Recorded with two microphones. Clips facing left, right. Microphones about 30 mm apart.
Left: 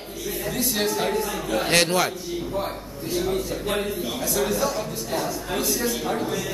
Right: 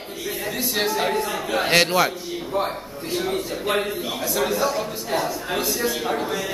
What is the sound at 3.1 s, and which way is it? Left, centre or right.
A man's voice, right.